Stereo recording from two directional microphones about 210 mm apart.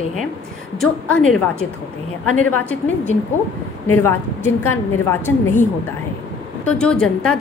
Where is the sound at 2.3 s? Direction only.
5° left (ahead or behind).